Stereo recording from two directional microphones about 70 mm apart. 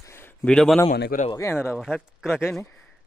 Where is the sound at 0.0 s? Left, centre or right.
Left.